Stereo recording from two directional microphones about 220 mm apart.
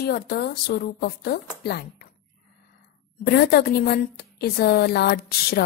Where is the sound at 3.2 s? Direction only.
45° left (ahead or behind).